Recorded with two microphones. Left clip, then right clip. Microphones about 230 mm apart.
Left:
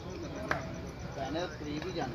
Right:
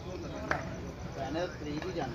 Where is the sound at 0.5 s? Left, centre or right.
Centre.